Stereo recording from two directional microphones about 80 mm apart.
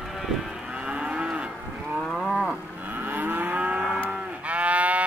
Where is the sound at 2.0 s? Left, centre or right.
Centre.